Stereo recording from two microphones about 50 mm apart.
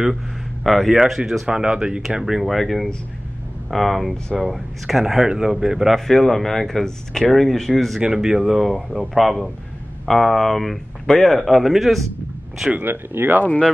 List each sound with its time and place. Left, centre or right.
0.7 s speech: centre
5.9 s speech: centre
8.0 s speech: centre
12.8 s speech: right